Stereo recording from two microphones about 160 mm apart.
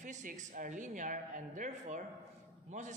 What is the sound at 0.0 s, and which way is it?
A man's voice, 50° right (ahead or behind).